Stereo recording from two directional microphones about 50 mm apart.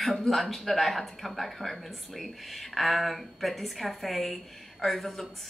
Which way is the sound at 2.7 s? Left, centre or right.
Centre.